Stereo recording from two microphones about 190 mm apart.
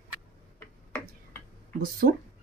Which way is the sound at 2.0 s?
45° right (ahead or behind).